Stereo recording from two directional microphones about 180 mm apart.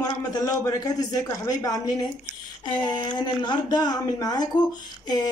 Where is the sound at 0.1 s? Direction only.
20° left (ahead or behind).